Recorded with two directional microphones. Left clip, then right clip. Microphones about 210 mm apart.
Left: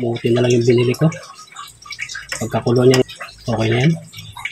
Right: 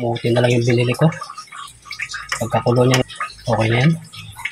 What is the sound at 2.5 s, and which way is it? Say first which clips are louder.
Speech: left 2 dB; 20° right (ahead or behind).